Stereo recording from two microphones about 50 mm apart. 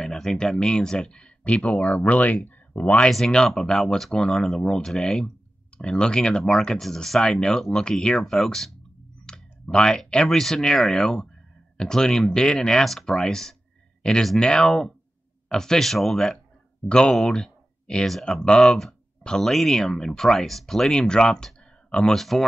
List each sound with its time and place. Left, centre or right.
0.0 s speech: centre; by 3.0 s left
3.1 s speech: centre
9.2 s speech: centre
16.8 s speech: centre